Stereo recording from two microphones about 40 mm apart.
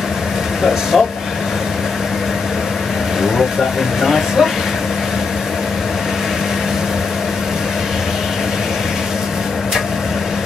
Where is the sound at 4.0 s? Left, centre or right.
Centre.